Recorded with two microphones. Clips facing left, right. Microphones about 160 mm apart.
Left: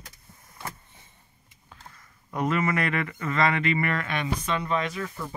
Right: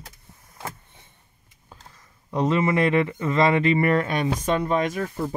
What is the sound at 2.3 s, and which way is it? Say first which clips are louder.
Speech: right 5 dB; 25° right (ahead or behind).